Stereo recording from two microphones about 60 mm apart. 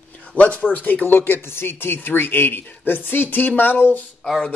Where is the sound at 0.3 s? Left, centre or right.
Left.